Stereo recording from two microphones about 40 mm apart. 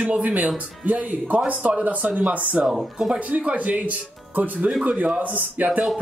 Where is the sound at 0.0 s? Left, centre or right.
Right.